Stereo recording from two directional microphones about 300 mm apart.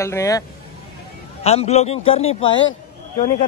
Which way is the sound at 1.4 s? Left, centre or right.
Left.